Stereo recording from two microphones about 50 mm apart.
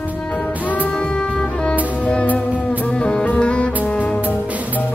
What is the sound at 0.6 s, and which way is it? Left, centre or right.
Music, left.